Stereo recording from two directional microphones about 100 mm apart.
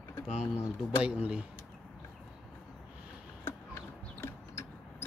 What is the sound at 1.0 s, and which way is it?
Speech, 10° right (ahead or behind).